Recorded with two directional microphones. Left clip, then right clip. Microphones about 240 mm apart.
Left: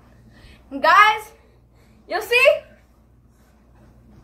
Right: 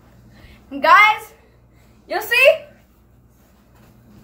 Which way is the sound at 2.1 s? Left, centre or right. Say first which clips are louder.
Right 2 dB; centre.